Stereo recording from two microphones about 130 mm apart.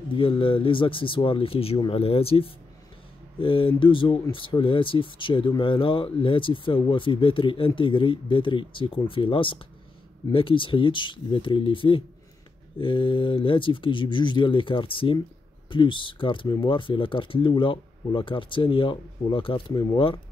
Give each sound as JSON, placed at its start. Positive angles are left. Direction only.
{"t": 0.1, "sound": "speech", "side_deg": 45}